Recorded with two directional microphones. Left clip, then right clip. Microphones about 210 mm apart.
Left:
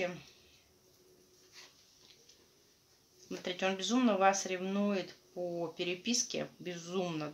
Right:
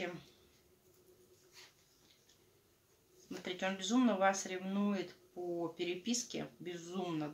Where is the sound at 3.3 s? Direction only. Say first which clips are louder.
Left 4 dB; 25° left (ahead or behind).